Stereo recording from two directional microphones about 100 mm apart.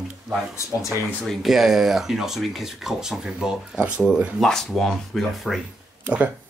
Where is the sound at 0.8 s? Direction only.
Centre (ahead or behind).